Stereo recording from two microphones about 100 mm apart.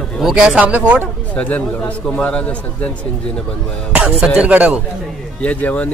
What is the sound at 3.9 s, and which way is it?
Speech, 10° right (ahead or behind).